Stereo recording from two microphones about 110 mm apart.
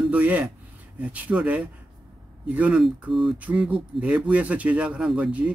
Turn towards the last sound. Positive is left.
turn(degrees=-10)  # may be behind; listen again after turning